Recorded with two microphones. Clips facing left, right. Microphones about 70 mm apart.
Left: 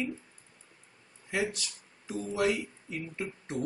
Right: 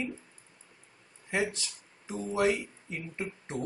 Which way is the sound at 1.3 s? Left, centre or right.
Right.